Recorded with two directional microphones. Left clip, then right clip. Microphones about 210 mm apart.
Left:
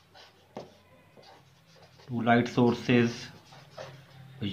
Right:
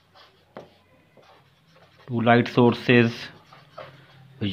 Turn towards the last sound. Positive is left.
turn(degrees=-45)  # may be behind; listen again after turning